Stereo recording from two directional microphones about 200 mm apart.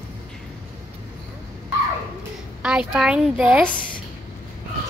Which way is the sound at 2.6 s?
5° right (ahead or behind).